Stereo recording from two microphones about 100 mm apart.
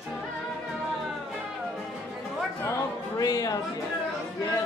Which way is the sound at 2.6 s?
40° left (ahead or behind).